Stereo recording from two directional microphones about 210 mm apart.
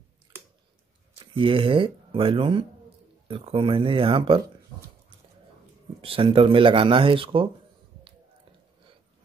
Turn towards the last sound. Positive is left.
turn(degrees=-25)  # may be behind; listen again after turning